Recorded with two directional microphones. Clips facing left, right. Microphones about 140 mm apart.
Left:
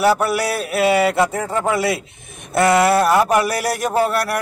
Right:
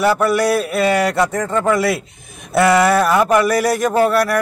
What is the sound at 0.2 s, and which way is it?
A man's voice, 5° left (ahead or behind).